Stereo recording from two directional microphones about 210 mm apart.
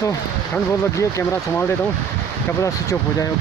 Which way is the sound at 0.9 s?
15° left (ahead or behind).